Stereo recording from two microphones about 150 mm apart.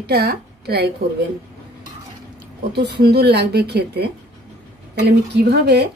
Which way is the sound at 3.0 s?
90° right.